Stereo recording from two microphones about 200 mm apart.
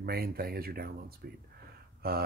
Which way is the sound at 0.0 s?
50° right (ahead or behind).